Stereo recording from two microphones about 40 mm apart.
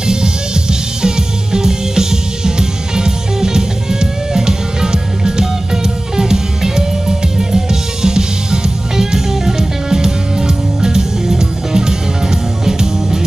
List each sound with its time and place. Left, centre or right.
0.0 s music: centre